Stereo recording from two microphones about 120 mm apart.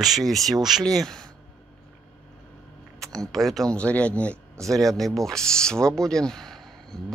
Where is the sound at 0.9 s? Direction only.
5° left (ahead or behind).